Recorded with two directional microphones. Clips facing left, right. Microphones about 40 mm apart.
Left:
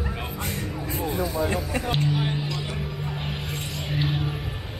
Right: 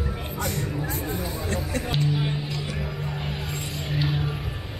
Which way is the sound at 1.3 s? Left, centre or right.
Centre.